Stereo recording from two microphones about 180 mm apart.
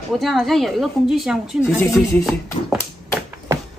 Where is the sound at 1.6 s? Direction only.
15° left (ahead or behind).